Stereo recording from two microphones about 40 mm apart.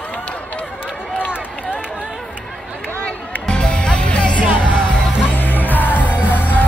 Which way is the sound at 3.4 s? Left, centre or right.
Left.